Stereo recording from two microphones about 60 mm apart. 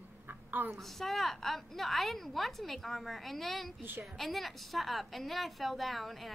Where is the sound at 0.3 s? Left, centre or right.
Right.